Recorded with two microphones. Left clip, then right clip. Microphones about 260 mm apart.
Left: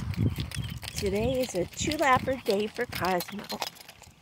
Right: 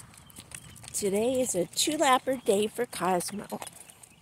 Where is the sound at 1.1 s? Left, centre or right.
Centre.